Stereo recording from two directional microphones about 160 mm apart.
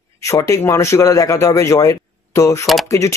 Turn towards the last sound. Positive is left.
turn(degrees=20)  # may be behind; listen again after turning